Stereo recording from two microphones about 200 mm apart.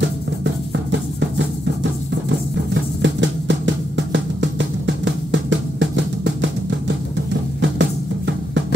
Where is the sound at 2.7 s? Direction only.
65° right (ahead or behind).